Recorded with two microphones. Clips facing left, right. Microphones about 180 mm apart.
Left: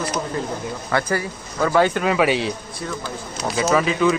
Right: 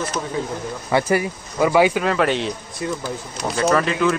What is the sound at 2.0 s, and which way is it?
Speech, 5° left (ahead or behind).